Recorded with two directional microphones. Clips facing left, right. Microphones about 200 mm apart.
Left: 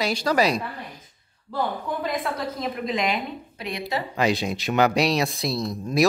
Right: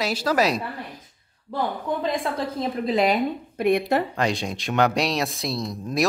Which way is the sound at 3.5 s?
55° right (ahead or behind).